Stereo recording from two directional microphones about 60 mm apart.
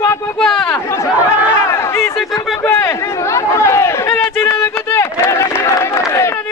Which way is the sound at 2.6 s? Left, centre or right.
Left.